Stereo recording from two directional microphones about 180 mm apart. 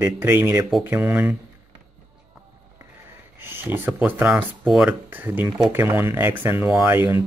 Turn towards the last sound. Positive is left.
turn(degrees=-15)  # may be behind; listen again after turning